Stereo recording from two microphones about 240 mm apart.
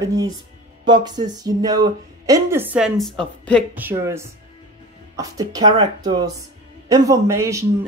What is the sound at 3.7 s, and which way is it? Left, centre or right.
Speech, centre.